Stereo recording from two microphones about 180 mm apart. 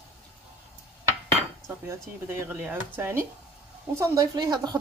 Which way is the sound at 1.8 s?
15° right (ahead or behind).